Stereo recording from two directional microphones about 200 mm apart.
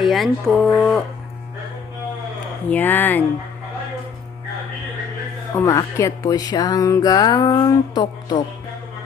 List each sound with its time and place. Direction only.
0.0 s speech: centre (ahead or behind)
2.7 s speech: 10° left (ahead or behind)
5.5 s speech: 15° left (ahead or behind)